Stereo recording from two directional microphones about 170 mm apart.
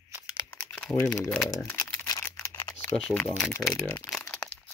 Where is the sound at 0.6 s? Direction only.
5° left (ahead or behind).